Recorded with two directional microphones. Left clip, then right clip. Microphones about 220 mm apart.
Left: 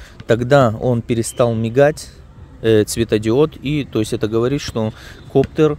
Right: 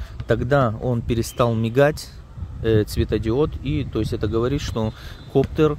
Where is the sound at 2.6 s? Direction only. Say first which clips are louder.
Left 6 dB; 20° left (ahead or behind).